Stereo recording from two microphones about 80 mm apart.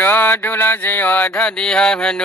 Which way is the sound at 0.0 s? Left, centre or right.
Left.